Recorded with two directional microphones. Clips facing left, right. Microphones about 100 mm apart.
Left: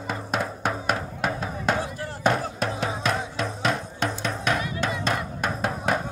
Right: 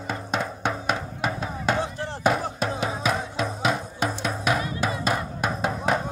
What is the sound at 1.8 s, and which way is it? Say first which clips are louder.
Chop: right 2 dB; 25° right (ahead or behind).